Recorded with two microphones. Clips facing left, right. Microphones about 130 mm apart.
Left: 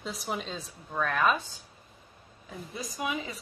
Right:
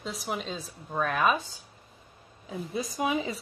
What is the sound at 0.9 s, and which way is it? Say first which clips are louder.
Speech: right 1 dB; 15° right (ahead or behind).